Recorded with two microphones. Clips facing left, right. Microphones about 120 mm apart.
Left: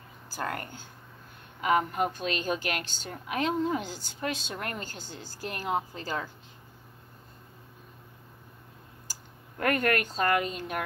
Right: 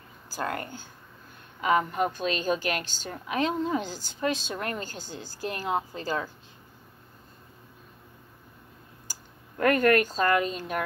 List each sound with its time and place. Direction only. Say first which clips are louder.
0.4 s a woman's voice: right 2 dB; 30° right (ahead or behind)
2.0 s a woman's voice: right 2 dB; 40° right (ahead or behind)
9.6 s a woman's voice: right 5 dB; 40° right (ahead or behind)